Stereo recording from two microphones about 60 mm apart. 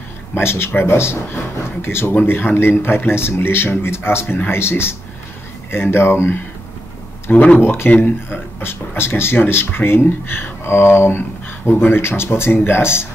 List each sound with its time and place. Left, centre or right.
0.3 s speech: left
7.3 s speech: left
7.6 s speech: left